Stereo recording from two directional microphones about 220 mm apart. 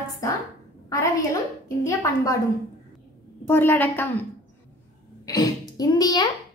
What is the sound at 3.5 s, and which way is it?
Speech, 10° left (ahead or behind).